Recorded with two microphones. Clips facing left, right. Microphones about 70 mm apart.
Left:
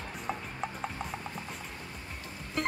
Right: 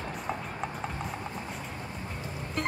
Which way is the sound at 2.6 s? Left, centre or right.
Centre.